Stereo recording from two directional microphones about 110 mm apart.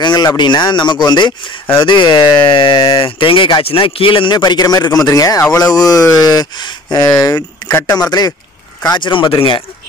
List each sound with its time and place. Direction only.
0.0 s speech: 40° left (ahead or behind)